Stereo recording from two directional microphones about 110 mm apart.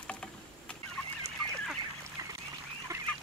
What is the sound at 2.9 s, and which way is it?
Goose, 30° right (ahead or behind).